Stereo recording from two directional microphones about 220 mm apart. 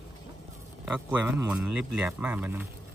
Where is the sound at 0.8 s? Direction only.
5° right (ahead or behind).